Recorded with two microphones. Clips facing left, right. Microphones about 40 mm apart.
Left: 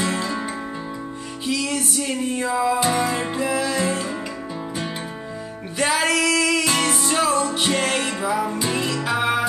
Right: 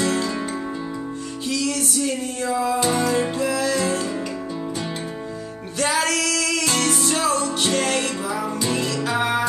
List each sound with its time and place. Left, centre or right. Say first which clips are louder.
0.0 s music: right 2 dB; centre
1.4 s music: even; left
5.8 s music: left 2 dB; left